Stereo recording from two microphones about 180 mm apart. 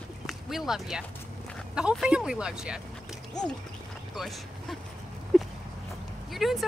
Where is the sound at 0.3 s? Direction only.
Centre (ahead or behind).